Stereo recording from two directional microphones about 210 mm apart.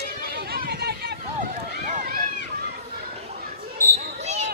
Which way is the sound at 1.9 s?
35° right (ahead or behind).